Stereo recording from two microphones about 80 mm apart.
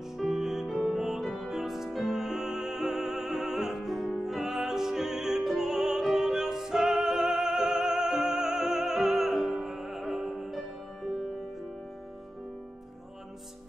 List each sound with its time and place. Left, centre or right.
0.2 s music: centre